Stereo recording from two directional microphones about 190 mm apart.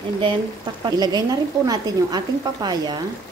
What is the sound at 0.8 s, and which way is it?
Speech, 20° right (ahead or behind).